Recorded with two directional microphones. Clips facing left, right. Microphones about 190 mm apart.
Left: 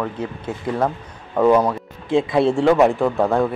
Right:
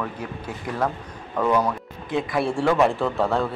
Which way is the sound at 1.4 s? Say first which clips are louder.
Left 6 dB; 30° left (ahead or behind).